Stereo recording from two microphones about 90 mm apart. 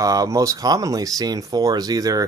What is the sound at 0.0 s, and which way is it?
Speech, 40° right (ahead or behind).